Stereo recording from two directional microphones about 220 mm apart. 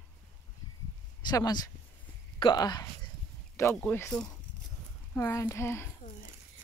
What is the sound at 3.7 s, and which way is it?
Speech, 5° left (ahead or behind).